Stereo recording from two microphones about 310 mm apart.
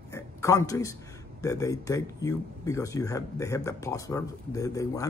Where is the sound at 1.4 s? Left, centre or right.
Centre.